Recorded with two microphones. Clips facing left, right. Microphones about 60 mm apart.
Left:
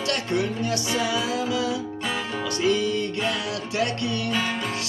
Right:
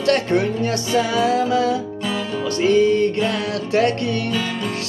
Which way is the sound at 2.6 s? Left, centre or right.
Right.